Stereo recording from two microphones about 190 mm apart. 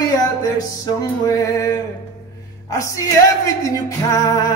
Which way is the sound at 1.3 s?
15° left (ahead or behind).